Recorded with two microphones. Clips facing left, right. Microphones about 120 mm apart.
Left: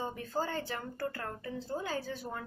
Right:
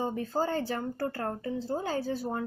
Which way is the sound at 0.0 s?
35° right (ahead or behind).